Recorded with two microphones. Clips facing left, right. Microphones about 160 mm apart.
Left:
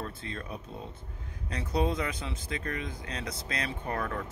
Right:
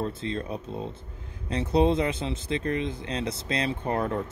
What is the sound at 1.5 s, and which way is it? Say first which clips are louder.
Speech: right 7 dB; 25° right (ahead or behind).